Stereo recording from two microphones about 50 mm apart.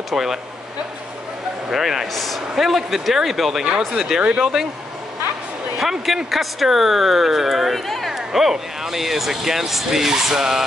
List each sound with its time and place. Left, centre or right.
0.1 s speech: centre
1.7 s speech: centre
5.8 s speech: centre